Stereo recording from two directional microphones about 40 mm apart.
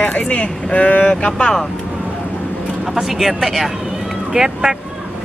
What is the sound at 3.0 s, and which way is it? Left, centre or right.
Speech, centre.